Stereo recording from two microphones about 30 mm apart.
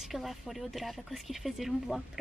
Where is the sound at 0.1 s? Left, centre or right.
Centre.